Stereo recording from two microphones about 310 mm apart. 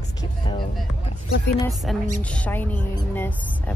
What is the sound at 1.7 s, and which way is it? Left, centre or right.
Speech, centre.